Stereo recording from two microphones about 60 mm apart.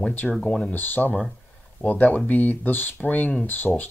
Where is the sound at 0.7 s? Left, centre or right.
Left.